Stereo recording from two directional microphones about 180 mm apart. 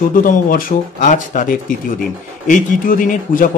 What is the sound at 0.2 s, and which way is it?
Speech, 50° left (ahead or behind).